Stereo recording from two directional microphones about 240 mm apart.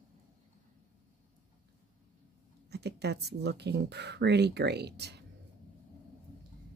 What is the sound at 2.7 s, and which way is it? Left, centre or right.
Speech, right.